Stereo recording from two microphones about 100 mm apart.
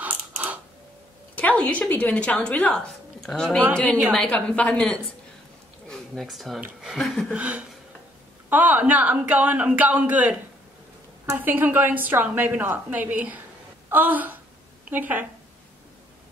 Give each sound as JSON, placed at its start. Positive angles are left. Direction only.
{"t": 0.0, "sound": "mechanisms", "side_deg": -15}
{"t": 1.3, "sound": "a woman's voice", "side_deg": 15}
{"t": 5.9, "sound": "speech", "side_deg": 0}
{"t": 7.3, "sound": "a woman's voice", "side_deg": -15}